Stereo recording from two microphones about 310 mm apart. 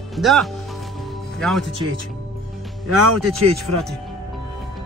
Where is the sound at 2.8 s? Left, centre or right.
Right.